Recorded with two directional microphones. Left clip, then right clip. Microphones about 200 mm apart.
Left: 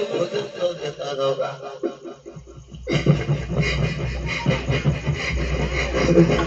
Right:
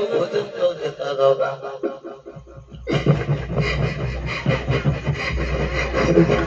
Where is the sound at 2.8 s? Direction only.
30° right (ahead or behind).